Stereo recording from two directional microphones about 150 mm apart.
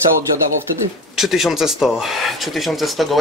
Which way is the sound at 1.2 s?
Centre (ahead or behind).